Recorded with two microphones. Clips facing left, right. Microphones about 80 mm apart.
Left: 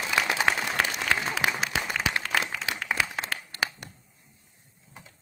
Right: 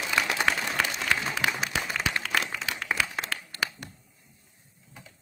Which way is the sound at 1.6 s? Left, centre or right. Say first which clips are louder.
Left 1 dB; centre.